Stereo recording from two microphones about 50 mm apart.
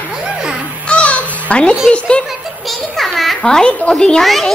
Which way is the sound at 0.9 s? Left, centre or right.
Left.